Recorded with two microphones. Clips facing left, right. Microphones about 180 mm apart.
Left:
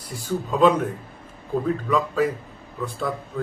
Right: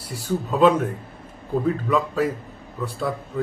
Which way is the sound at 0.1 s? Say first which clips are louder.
Right 1 dB; 5° right (ahead or behind).